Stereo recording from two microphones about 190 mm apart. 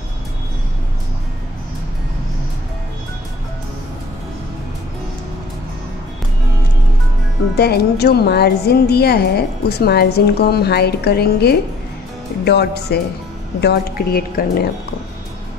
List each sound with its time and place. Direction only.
7.5 s a woman's voice: 60° left (ahead or behind)